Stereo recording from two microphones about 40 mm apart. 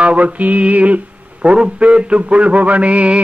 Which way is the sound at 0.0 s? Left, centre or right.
Right.